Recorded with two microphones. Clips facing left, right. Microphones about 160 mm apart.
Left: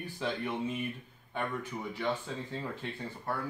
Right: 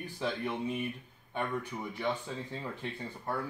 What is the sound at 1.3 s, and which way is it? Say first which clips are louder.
Speech: right 1 dB; 15° right (ahead or behind).